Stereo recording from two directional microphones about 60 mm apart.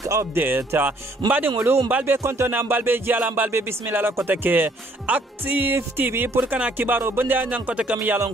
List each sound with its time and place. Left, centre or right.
0.0 s speech: right
0.3 s music: right
0.8 s speech: right
2.1 s music: right